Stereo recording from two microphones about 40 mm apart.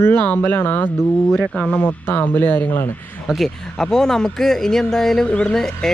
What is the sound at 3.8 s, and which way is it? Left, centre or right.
Speech, centre.